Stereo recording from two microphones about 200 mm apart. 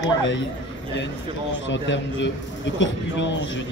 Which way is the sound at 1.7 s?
65° left (ahead or behind).